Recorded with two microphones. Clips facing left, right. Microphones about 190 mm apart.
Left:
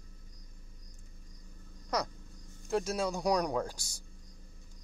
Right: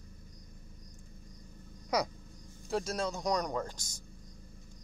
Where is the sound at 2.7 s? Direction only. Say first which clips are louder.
Left 2 dB; 5° left (ahead or behind).